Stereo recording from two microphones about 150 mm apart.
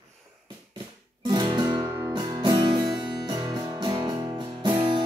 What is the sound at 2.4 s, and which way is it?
Music, 30° right (ahead or behind).